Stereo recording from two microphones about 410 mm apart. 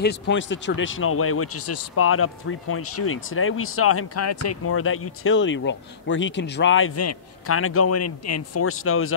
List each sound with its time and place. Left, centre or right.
0.0 s speech: left